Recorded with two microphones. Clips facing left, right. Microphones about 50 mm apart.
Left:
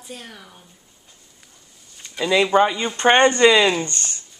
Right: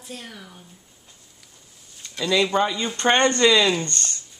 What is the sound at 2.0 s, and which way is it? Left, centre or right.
A woman's voice, centre.